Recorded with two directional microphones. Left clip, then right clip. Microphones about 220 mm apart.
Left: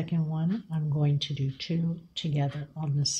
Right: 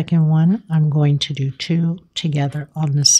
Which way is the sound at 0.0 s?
40° right (ahead or behind).